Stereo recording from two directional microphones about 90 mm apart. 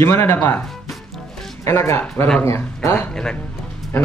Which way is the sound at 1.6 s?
30° left (ahead or behind).